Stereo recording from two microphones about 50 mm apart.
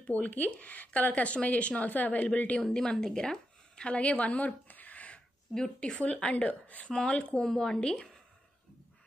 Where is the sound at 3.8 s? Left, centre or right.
Left.